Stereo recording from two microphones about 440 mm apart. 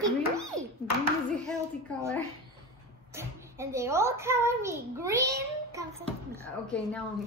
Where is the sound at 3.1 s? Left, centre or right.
Centre.